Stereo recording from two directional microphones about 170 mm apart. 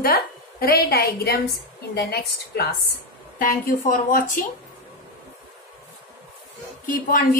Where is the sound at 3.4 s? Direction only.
55° left (ahead or behind).